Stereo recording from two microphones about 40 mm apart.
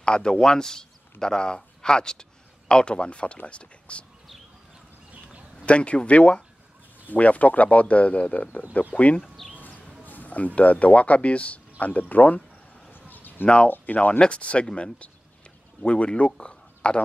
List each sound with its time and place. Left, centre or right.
0.0 s speech: left
5.7 s speech: left
9.4 s a sound: centre
10.0 s speech: left
13.1 s a sound: left
13.9 s speech: left
14.2 s speech: left
15.8 s speech: left